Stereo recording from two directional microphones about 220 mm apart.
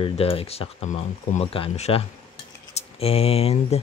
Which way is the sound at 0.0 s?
25° left (ahead or behind).